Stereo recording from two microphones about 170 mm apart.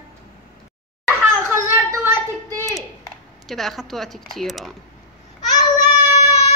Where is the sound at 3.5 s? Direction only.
Centre (ahead or behind).